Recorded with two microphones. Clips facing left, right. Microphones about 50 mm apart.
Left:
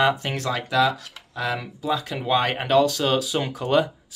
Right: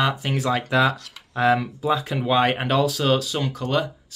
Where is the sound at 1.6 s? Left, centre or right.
Centre.